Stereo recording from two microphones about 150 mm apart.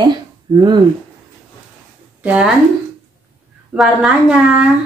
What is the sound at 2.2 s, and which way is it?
Speech, 5° right (ahead or behind).